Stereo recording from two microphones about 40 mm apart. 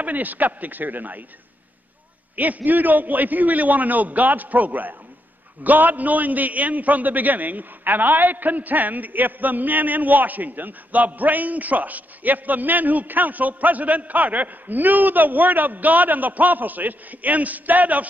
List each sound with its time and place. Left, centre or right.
0.0 s a man's voice: right
2.3 s a man's voice: right